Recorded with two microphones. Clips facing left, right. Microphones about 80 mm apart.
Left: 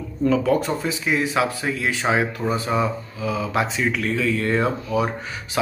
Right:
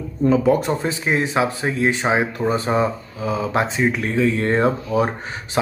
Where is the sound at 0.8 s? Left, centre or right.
Right.